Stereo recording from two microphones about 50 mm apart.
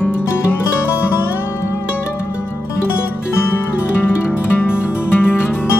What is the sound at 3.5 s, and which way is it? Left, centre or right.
Music, left.